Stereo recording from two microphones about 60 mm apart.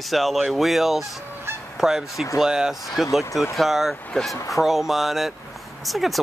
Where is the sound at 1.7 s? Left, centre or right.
Centre.